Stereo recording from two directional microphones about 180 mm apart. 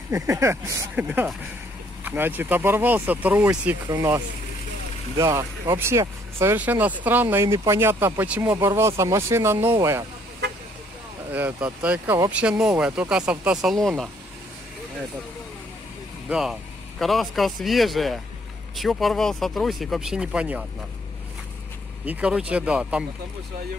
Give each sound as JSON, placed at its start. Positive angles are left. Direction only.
{"t": 0.1, "sound": "speech", "side_deg": -15}
{"t": 11.3, "sound": "speech", "side_deg": -10}
{"t": 16.3, "sound": "speech", "side_deg": 0}
{"t": 22.0, "sound": "speech", "side_deg": -10}